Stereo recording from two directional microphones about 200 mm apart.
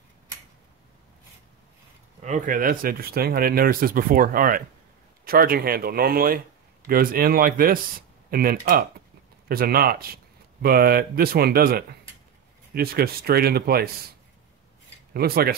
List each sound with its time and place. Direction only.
2.2 s speech: 40° right (ahead or behind)
15.1 s speech: 50° right (ahead or behind)